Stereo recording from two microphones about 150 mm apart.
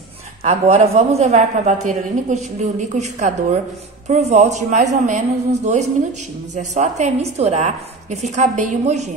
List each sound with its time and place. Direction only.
0.4 s a woman's voice: 45° right (ahead or behind)